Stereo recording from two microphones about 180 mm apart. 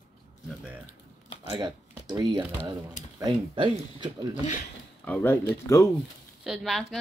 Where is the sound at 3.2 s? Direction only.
25° right (ahead or behind).